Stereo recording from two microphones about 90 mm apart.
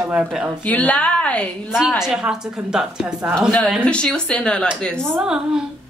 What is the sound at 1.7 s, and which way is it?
A woman's voice, 5° right (ahead or behind).